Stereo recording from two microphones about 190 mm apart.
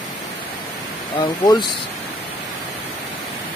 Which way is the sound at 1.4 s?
20° left (ahead or behind).